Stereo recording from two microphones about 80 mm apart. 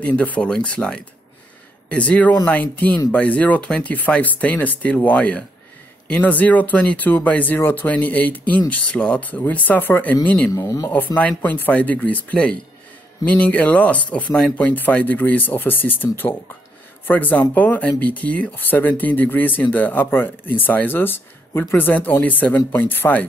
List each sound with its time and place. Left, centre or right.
0.0 s speech: centre
10.5 s speech: left
11.1 s speech: centre